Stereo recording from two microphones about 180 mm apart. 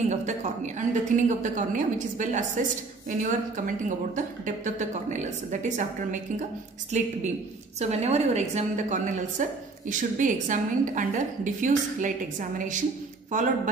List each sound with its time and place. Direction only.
0.1 s a woman's voice: 40° right (ahead or behind)